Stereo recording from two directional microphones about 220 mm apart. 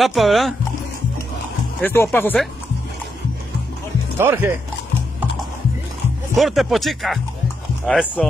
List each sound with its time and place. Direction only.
0.0 s speech: centre (ahead or behind)
1.8 s speech: 10° left (ahead or behind)
4.2 s speech: 10° right (ahead or behind)
6.3 s speech: centre (ahead or behind)